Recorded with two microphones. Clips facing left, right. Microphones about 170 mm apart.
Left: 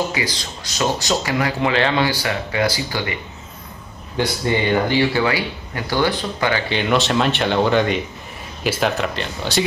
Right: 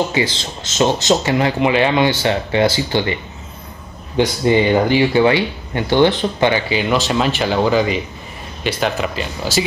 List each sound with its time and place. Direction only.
0.1 s speech: 25° right (ahead or behind)
4.2 s speech: 20° right (ahead or behind)
6.7 s speech: 5° right (ahead or behind)